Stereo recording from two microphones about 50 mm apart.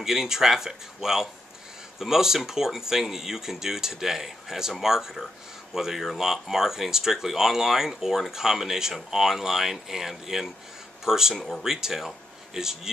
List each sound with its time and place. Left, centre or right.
0.0 s speech: centre
11.3 s speech: centre
11.6 s speech: centre